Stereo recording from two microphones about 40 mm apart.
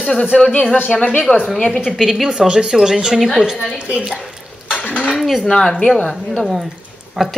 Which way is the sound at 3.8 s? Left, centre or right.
Right.